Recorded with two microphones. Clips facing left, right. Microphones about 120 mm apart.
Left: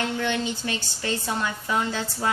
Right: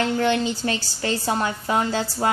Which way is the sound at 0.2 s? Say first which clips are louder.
Right 5 dB; 40° right (ahead or behind).